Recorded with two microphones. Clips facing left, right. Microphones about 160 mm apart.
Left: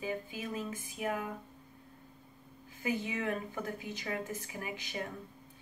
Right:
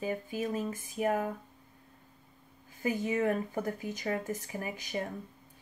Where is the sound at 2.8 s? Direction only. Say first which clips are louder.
Right 5 dB; 45° right (ahead or behind).